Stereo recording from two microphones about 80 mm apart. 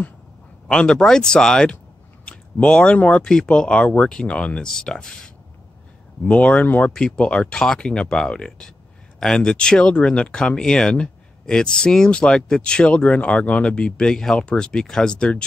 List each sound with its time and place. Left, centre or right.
0.7 s speech: centre